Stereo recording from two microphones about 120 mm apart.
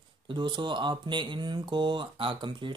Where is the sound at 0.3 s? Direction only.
40° right (ahead or behind).